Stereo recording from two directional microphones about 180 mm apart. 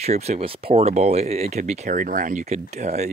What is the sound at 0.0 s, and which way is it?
Speech, 35° right (ahead or behind).